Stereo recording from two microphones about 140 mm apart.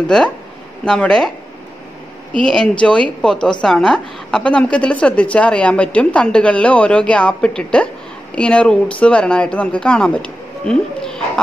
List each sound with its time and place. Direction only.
0.0 s speech: 5° left (ahead or behind)
2.3 s a woman's voice: 5° left (ahead or behind)